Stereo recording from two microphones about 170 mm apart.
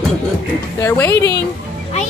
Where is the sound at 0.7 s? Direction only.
15° left (ahead or behind).